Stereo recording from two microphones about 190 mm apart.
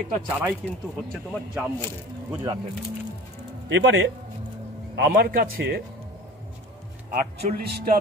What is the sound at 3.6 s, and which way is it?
Speech, 75° right (ahead or behind).